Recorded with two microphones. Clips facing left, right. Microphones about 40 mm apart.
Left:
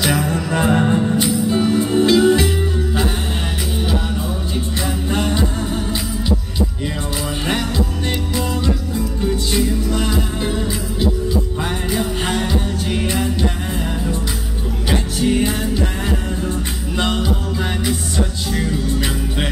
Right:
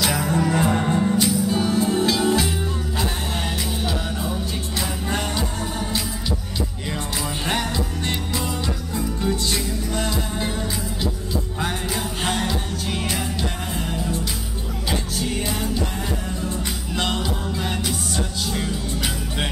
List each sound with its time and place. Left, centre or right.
0.0 s music: left
5.1 s music: centre
9.2 s music: centre
11.9 s music: centre
14.9 s music: left
16.9 s music: centre